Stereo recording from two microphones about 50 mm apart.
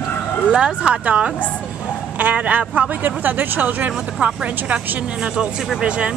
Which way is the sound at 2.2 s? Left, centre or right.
Right.